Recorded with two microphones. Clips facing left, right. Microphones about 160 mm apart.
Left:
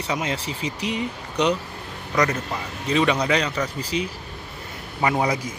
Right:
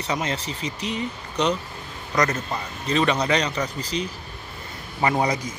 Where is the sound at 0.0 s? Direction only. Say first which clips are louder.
Even; 10° left (ahead or behind).